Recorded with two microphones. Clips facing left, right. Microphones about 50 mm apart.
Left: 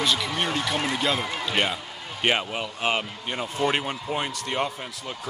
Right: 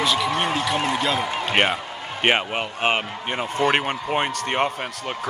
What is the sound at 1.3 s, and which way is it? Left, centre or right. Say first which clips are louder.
Speech: right 5 dB; right.